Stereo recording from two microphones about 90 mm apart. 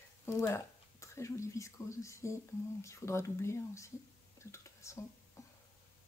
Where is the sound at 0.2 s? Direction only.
30° left (ahead or behind).